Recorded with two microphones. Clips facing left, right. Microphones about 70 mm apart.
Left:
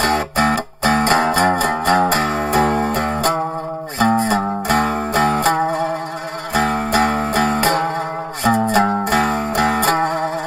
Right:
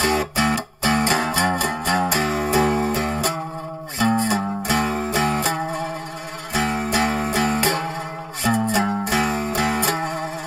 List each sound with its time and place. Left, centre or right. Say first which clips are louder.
0.0 s music: left 4 dB; left